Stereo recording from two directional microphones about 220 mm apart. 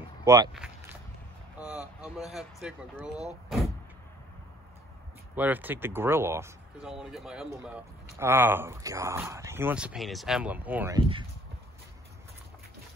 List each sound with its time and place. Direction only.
0.2 s speech: 15° right (ahead or behind)
1.7 s speech: 5° right (ahead or behind)
5.3 s speech: 10° right (ahead or behind)
11.0 s speech: 20° right (ahead or behind)